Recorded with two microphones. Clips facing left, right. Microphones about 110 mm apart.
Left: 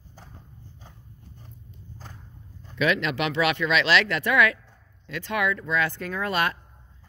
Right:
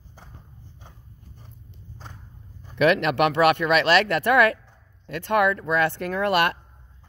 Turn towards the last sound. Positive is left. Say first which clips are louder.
# right 5 dB
turn(degrees=-70)  # may be behind; listen again after turning